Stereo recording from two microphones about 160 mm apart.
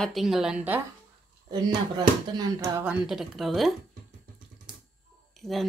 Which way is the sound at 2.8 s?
5° right (ahead or behind).